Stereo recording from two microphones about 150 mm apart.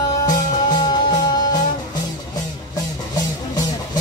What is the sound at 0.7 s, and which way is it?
Music, 25° left (ahead or behind).